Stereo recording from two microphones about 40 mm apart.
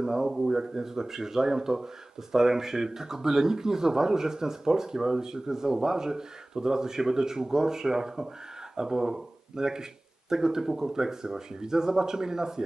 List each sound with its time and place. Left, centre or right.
0.0 s speech: centre